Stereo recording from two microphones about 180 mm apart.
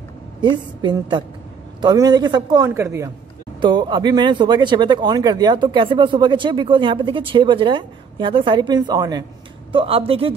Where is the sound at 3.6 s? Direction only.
25° right (ahead or behind).